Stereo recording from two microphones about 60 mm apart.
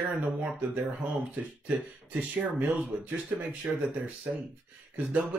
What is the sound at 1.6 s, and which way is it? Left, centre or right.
Speech, right.